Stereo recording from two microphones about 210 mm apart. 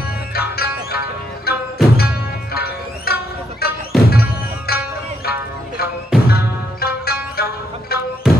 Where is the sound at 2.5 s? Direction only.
50° left (ahead or behind).